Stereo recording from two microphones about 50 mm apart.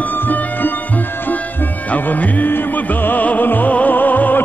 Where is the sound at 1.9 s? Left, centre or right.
Left.